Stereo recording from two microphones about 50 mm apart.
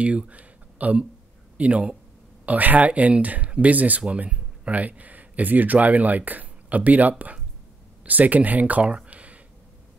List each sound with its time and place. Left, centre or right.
0.0 s speech: right